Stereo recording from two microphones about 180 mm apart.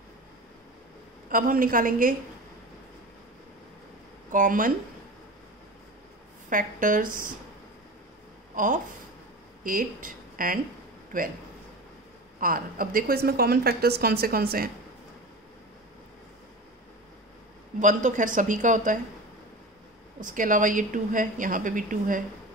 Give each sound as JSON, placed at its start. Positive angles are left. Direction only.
{"t": 1.3, "sound": "a woman's voice", "side_deg": -50}
{"t": 4.3, "sound": "a woman's voice", "side_deg": -50}
{"t": 6.5, "sound": "a woman's voice", "side_deg": -50}
{"t": 8.5, "sound": "a woman's voice", "side_deg": -45}
{"t": 12.4, "sound": "a woman's voice", "side_deg": -50}
{"t": 17.7, "sound": "a woman's voice", "side_deg": -45}
{"t": 20.2, "sound": "a woman's voice", "side_deg": -45}